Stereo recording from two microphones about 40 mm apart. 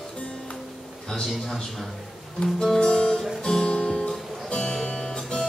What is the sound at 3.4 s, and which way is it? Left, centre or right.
Music, centre.